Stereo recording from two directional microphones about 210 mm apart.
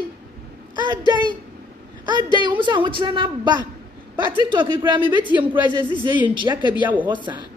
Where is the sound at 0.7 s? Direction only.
20° right (ahead or behind).